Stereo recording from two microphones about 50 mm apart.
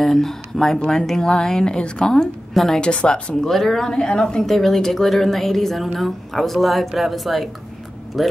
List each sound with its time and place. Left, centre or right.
0.0 s a woman's voice: centre
2.8 s speech: centre
3.4 s a woman's voice: centre